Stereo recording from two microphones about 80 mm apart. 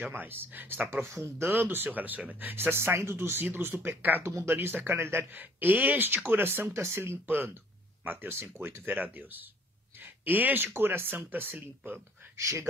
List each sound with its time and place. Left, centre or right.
0.0 s speech: right
12.4 s speech: right